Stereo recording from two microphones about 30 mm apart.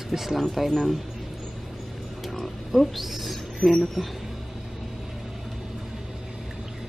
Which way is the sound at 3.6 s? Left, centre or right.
Left.